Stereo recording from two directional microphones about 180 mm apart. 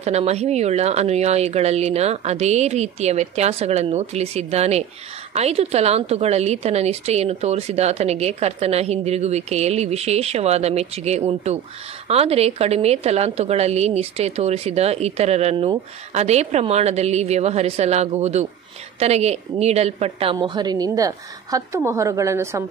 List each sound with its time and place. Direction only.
0.0 s a woman's voice: 35° right (ahead or behind); by 22.7 s 15° right (ahead or behind)